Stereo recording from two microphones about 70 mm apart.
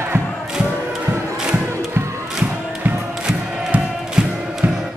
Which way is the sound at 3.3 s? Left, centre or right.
Centre.